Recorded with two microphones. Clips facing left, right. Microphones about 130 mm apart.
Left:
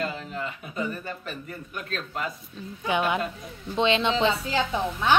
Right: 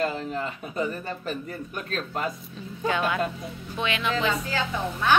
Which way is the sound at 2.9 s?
20° left (ahead or behind).